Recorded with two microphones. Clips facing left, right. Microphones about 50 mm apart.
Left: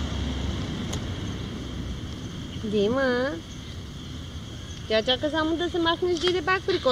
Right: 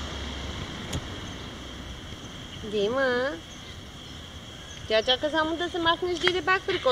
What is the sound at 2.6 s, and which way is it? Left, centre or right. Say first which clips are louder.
Speech: left 2 dB; centre.